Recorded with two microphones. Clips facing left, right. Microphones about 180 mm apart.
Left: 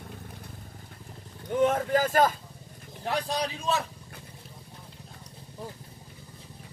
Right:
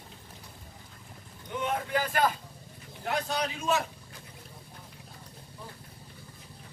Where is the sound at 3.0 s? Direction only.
35° left (ahead or behind).